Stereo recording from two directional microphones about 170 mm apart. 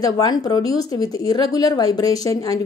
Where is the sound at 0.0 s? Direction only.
25° left (ahead or behind).